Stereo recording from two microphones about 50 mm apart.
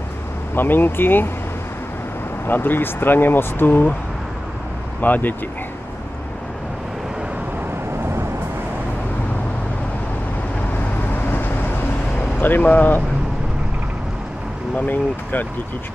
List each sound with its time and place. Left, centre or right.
0.6 s speech: left
2.4 s speech: left
5.0 s speech: left
11.2 s vehicle: left
12.4 s speech: left
14.8 s speech: left